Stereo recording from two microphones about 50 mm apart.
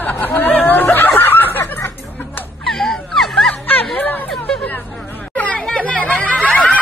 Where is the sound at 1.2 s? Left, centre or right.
Left.